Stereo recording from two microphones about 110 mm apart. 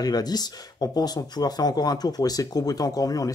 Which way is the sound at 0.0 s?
35° left (ahead or behind).